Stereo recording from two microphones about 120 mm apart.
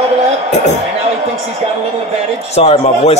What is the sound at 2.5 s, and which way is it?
Speech, 60° left (ahead or behind).